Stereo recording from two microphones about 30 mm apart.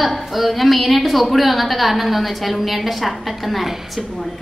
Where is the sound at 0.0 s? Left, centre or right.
Centre.